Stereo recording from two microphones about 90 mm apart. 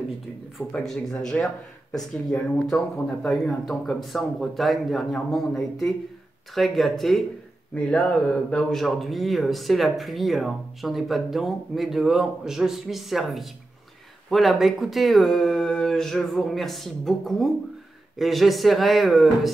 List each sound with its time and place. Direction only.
0.6 s speech: 20° left (ahead or behind); by 7.2 s centre (ahead or behind)
7.7 s speech: 15° left (ahead or behind)